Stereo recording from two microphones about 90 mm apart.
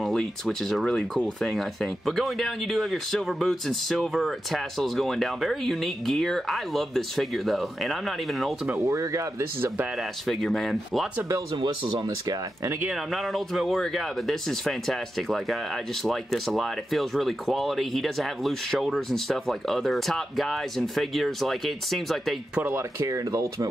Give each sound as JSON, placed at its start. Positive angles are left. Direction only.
{"t": 0.0, "sound": "speech", "side_deg": 5}
{"t": 8.7, "sound": "speech", "side_deg": -30}
{"t": 10.2, "sound": "speech", "side_deg": 0}
{"t": 11.5, "sound": "speech", "side_deg": -65}
{"t": 12.8, "sound": "speech", "side_deg": -5}
{"t": 22.8, "sound": "speech", "side_deg": -40}